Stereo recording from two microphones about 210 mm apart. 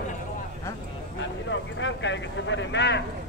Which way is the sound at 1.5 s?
60° left (ahead or behind).